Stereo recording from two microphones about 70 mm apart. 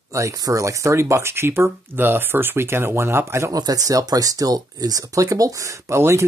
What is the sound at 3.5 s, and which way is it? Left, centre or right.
Speech, right.